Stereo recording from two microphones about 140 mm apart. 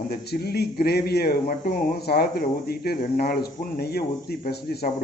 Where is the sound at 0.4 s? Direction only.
90° left.